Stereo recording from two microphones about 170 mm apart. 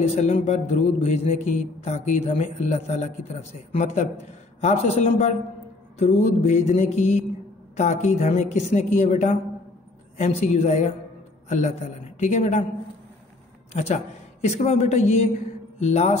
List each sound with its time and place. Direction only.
0.0 s a woman's voice: 40° left (ahead or behind)
13.7 s a woman's voice: 40° left (ahead or behind)